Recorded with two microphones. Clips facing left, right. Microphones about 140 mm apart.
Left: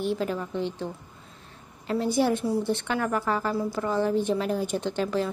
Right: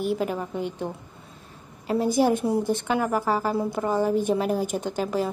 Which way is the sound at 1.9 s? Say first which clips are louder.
Right 3 dB; 10° right (ahead or behind).